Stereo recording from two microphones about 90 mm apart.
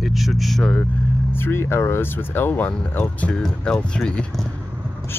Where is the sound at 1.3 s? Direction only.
25° left (ahead or behind); by 4.4 s 10° left (ahead or behind).